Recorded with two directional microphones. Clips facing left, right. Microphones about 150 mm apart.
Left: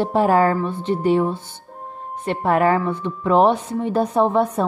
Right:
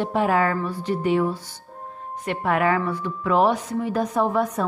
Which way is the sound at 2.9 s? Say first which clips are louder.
Left 4 dB; 25° left (ahead or behind).